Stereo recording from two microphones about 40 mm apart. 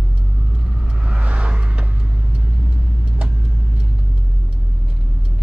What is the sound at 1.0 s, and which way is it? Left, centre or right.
Vehicle, right.